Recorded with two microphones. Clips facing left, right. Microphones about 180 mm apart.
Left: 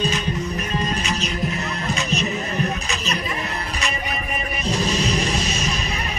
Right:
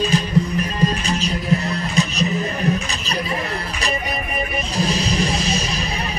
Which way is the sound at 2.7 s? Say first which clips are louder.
Right 3 dB; 35° right (ahead or behind).